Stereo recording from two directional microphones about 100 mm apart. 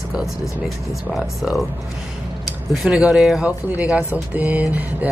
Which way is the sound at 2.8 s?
5° right (ahead or behind).